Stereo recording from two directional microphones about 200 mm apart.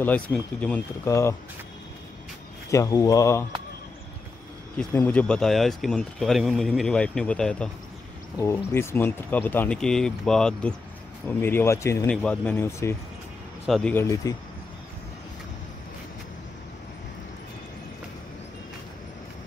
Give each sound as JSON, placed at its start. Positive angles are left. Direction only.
{"t": 0.0, "sound": "speech", "side_deg": 5}
{"t": 2.7, "sound": "speech", "side_deg": 15}
{"t": 4.7, "sound": "speech", "side_deg": 5}